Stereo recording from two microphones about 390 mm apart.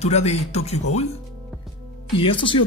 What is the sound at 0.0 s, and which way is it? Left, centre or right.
Speech, centre.